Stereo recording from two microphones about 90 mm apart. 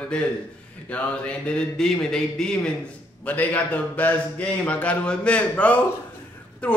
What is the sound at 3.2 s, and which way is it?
A man's voice, 15° left (ahead or behind).